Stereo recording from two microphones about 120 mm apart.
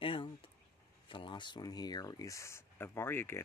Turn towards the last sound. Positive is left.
turn(degrees=20)  # may be behind; listen again after turning